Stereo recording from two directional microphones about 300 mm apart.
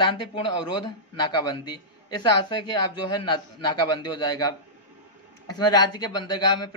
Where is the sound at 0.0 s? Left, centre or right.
Centre.